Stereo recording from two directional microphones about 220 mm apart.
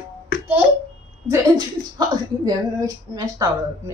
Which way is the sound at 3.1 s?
15° right (ahead or behind).